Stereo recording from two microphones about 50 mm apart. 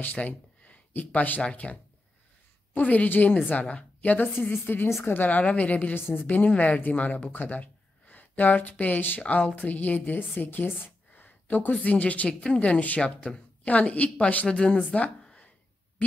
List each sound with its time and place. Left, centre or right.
0.0 s a woman's voice: left
5.4 s speech: left
5.9 s a woman's voice: left
6.2 s speech: left
9.2 s speech: left
9.6 s a woman's voice: left
10.8 s a sound: left
11.8 s speech: left
15.2 s a sound: centre